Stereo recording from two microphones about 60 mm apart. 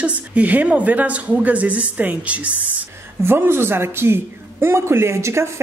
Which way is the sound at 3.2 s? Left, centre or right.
Right.